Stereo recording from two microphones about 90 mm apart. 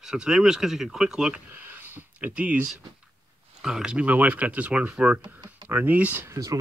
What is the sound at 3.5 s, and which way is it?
Speech, 5° right (ahead or behind).